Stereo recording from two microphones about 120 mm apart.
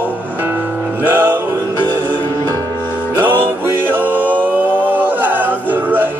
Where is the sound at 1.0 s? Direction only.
15° right (ahead or behind).